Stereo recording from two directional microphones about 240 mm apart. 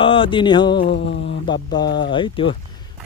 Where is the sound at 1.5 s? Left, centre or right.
Centre.